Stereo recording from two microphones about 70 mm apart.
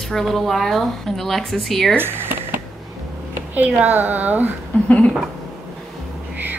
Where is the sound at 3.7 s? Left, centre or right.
Right.